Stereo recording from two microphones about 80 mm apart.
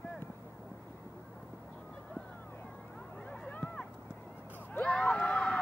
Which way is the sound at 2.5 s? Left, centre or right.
Left.